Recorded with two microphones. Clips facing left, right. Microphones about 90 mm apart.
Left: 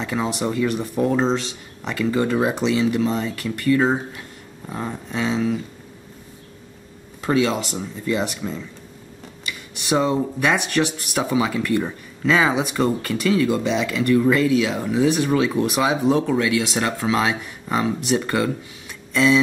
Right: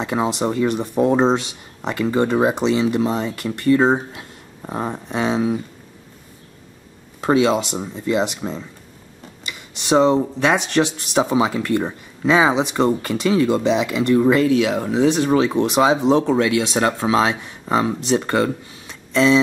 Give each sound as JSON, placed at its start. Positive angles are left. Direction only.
{"t": 0.0, "sound": "speech", "side_deg": -25}
{"t": 7.2, "sound": "speech", "side_deg": -20}